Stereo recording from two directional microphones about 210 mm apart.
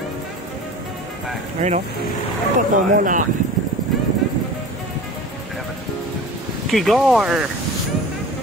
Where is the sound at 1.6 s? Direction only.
35° right (ahead or behind).